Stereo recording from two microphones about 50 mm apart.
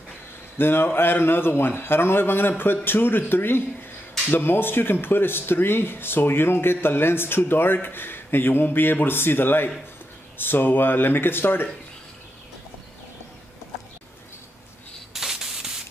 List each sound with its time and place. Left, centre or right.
0.6 s speech: left
15.1 s spray: centre